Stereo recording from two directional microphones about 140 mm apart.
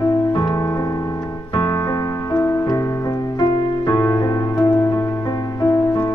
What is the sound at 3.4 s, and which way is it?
Music, 30° left (ahead or behind).